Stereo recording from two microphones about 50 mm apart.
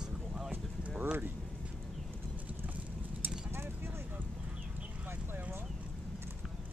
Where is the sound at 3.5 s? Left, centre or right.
Right.